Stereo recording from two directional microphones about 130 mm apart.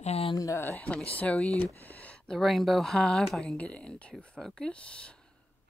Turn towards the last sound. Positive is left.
turn(degrees=5)  # may be behind; listen again after turning